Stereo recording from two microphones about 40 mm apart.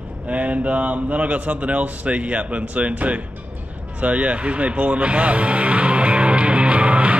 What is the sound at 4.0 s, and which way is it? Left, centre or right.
Music, right.